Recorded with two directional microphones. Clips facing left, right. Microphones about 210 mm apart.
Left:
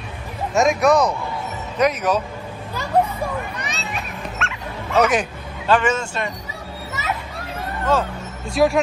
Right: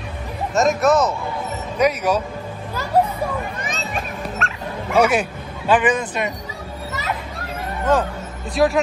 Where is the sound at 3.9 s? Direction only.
40° right (ahead or behind).